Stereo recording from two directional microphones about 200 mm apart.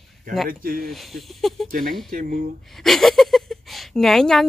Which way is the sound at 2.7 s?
Centre (ahead or behind).